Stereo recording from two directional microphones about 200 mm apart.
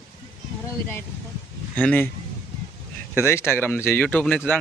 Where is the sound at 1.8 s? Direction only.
5° left (ahead or behind).